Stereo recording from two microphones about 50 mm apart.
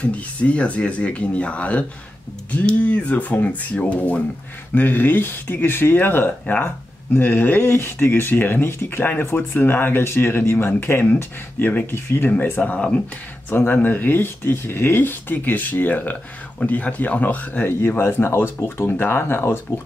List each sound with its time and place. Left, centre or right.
0.0 s speech: left
4.7 s speech: left
12.5 s speech: left
13.5 s speech: left